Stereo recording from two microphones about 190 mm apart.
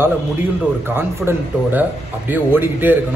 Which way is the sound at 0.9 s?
10° right (ahead or behind).